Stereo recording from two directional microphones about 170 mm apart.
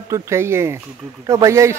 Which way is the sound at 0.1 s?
15° right (ahead or behind).